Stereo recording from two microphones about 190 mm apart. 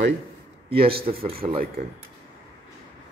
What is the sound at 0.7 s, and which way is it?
Speech, 55° right (ahead or behind).